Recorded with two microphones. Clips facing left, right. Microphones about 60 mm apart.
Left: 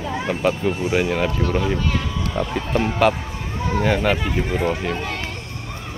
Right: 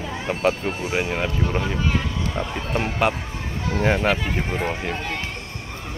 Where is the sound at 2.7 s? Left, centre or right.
Centre.